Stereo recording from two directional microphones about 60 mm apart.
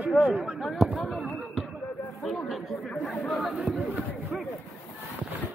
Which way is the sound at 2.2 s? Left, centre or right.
Centre.